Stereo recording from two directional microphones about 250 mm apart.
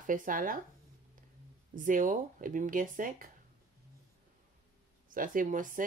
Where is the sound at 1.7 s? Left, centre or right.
Right.